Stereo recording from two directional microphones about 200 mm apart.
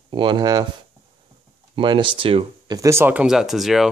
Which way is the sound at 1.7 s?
25° right (ahead or behind).